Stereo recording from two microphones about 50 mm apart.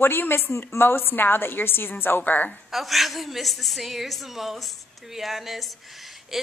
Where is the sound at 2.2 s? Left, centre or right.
Left.